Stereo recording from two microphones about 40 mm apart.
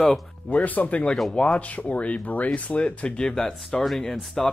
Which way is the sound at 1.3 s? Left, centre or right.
Left.